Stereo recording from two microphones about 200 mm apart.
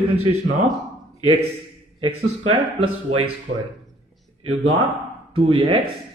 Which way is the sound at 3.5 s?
35° right (ahead or behind).